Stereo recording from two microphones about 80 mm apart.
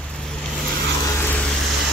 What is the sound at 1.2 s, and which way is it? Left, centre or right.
Vehicle, left.